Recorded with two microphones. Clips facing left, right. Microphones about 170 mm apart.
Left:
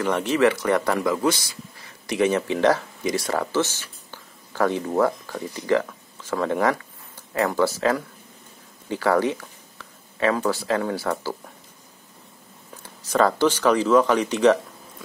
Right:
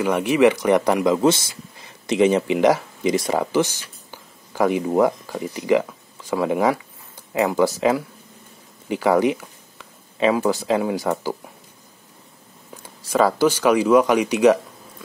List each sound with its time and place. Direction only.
0.0 s speech: 10° right (ahead or behind)
12.8 s speech: 10° right (ahead or behind)